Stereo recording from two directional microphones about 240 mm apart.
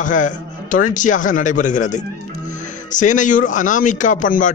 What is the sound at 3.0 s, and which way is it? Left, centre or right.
A man's voice, left.